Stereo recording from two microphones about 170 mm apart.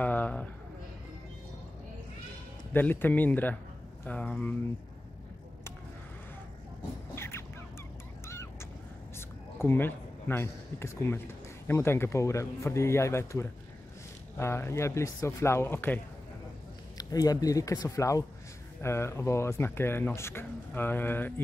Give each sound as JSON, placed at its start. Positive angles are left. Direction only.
{"t": 0.0, "sound": "a sound", "side_deg": 10}
{"t": 2.7, "sound": "speech", "side_deg": 10}
{"t": 7.2, "sound": "fowl", "side_deg": 15}
{"t": 9.6, "sound": "a man's voice", "side_deg": 10}
{"t": 16.9, "sound": "speech", "side_deg": 20}